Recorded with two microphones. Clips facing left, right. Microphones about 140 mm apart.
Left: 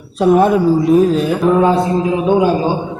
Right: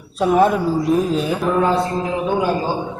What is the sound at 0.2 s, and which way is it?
A man's voice, centre (ahead or behind).